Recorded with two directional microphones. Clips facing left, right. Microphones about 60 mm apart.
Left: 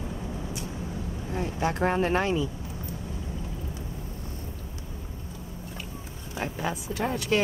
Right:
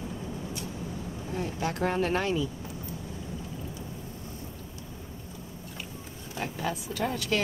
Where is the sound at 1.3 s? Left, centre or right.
Left.